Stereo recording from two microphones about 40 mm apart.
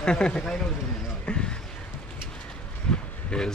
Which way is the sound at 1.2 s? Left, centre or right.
Left.